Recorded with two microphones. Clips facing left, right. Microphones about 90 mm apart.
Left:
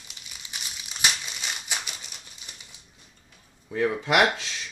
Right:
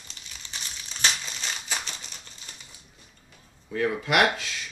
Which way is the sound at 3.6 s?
25° left (ahead or behind).